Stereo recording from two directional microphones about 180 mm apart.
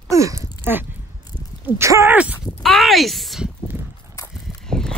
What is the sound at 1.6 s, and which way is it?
Speech, 15° right (ahead or behind).